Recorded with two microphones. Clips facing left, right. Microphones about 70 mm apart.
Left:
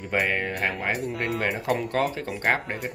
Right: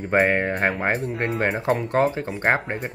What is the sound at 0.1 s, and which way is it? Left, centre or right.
Speech, right.